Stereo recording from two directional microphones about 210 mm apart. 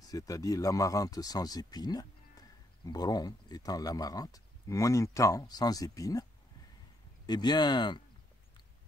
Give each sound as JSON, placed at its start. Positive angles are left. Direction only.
{"t": 0.0, "sound": "speech", "side_deg": 15}
{"t": 7.2, "sound": "speech", "side_deg": 20}